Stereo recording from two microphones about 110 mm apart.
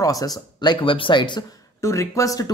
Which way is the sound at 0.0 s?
35° left (ahead or behind).